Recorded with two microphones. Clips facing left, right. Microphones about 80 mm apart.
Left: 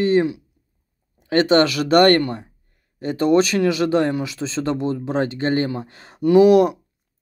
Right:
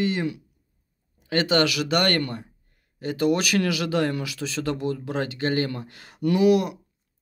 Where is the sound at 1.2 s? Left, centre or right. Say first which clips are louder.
Left 6 dB; left.